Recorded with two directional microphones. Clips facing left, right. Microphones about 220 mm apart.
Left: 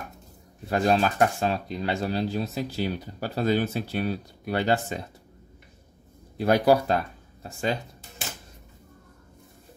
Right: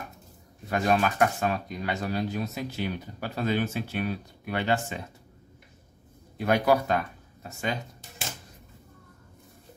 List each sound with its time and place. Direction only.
0.7 s speech: 30° left (ahead or behind)
6.3 s speech: 35° left (ahead or behind)